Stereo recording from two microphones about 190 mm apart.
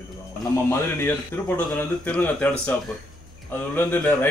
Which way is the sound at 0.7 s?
10° left (ahead or behind).